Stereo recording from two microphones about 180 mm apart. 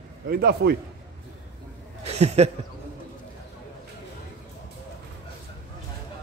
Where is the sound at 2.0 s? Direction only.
35° right (ahead or behind).